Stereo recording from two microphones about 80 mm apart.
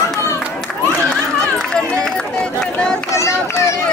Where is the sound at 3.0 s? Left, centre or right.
Left.